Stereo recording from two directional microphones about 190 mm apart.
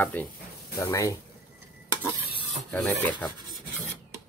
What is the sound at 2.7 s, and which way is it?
Filing, 10° left (ahead or behind).